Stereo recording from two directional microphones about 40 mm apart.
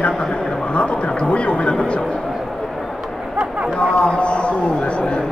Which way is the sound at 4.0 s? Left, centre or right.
Left.